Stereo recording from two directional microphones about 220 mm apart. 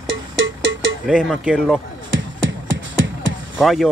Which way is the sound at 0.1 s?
60° right (ahead or behind).